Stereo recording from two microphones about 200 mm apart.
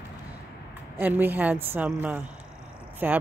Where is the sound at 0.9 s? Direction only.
10° right (ahead or behind).